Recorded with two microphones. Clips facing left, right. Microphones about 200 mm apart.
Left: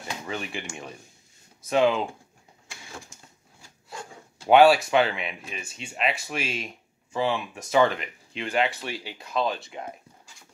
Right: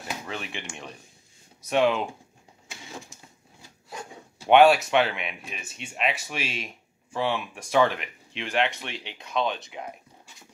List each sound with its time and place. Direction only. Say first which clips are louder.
0.0 s speech: left 1 dB; centre (ahead or behind)
3.9 s a sound: right 1 dB; 20° right (ahead or behind)
4.5 s speech: even; centre (ahead or behind)